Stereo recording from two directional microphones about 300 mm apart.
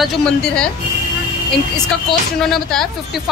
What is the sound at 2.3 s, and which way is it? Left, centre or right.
Speech, centre.